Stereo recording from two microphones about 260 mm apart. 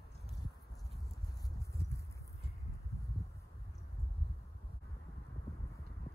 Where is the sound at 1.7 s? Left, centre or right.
Centre.